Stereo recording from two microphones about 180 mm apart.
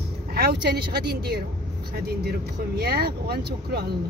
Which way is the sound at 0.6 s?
60° right (ahead or behind).